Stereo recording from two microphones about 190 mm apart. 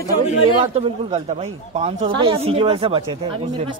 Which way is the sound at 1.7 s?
35° right (ahead or behind).